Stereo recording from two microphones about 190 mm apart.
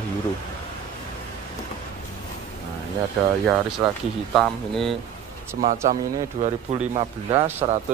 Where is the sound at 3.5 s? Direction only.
Centre (ahead or behind).